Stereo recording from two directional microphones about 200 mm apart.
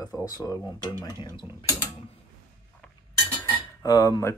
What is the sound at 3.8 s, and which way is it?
Speech, 15° left (ahead or behind).